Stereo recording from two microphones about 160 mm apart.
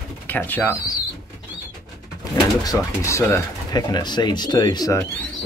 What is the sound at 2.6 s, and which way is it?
Speech, 20° left (ahead or behind).